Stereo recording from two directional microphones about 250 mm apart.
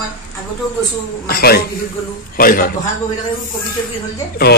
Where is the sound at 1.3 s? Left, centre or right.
Left.